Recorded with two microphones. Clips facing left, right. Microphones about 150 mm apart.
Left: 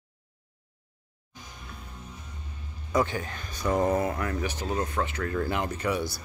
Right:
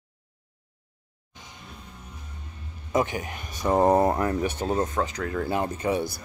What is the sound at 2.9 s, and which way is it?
Speech, 15° right (ahead or behind).